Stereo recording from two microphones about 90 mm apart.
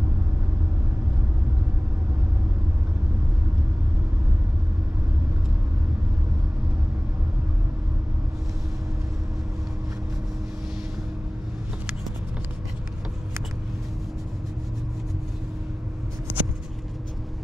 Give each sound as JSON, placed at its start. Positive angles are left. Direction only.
{"t": 16.3, "sound": "vehicle", "side_deg": -15}